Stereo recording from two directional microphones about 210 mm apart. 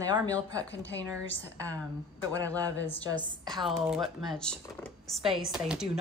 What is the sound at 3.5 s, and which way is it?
Speech, centre (ahead or behind).